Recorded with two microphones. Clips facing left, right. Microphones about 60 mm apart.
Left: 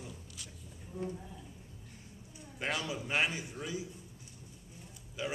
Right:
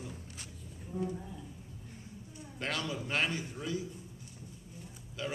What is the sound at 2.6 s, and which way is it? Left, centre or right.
A man's voice, centre.